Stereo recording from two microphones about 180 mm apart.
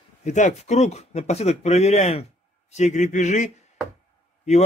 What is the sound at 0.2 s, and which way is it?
Speech, 40° left (ahead or behind).